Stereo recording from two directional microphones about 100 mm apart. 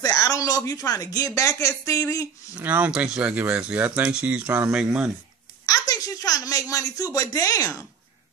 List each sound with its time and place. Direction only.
0.0 s speech: 35° left (ahead or behind)
2.5 s speech: 20° right (ahead or behind)
5.7 s a sound: 35° left (ahead or behind)